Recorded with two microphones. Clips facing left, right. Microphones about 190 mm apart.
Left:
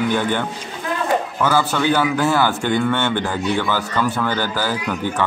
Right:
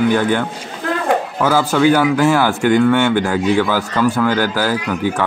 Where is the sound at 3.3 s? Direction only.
90° right.